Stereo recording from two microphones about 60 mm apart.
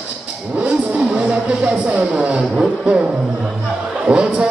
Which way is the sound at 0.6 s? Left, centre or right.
Right.